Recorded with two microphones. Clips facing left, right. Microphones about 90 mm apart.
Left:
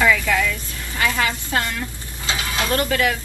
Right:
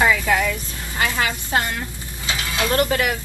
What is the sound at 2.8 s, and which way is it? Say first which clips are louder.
Speech: right 1 dB; 25° right (ahead or behind).